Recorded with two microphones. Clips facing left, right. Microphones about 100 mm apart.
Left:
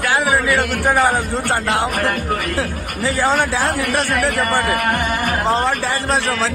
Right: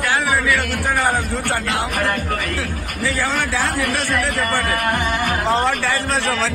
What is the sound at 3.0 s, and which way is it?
Speech, 20° left (ahead or behind).